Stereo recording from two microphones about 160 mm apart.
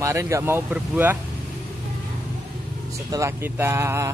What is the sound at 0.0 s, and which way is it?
Speech, 20° right (ahead or behind).